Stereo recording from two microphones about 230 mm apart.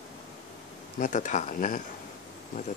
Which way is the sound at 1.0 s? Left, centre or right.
Left.